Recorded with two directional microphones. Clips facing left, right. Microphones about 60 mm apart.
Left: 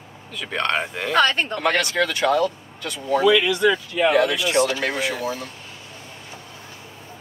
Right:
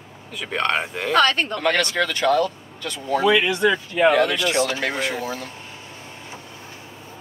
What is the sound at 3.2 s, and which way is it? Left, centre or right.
Speech, right.